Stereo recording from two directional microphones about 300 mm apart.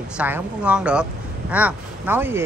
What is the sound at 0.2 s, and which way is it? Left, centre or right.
A woman's voice, centre.